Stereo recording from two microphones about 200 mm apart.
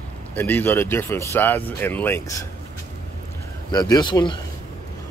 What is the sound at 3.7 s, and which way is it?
Speech, 20° left (ahead or behind).